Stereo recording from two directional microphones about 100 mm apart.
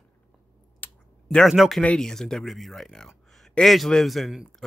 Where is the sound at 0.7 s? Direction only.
15° left (ahead or behind).